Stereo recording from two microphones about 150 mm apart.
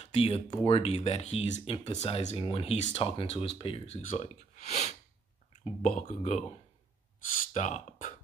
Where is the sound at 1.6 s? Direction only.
35° left (ahead or behind).